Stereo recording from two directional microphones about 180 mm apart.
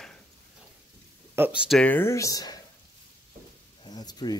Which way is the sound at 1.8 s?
10° left (ahead or behind).